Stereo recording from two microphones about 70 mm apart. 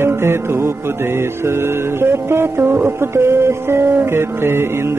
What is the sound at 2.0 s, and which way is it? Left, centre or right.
Music, right.